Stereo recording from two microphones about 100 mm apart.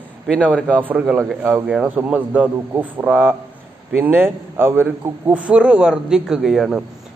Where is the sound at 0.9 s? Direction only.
15° right (ahead or behind).